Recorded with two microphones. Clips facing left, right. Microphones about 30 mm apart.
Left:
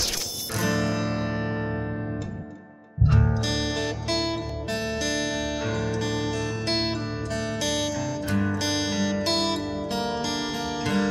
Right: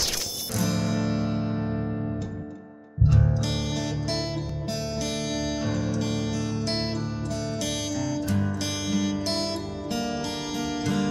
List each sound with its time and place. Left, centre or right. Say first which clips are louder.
0.6 s music: left 1 dB; left
3.2 s music: left 1 dB; left
9.6 s music: left 2 dB; left